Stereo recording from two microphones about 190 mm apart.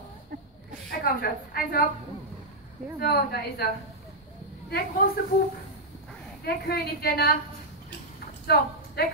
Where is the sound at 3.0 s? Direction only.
55° left (ahead or behind).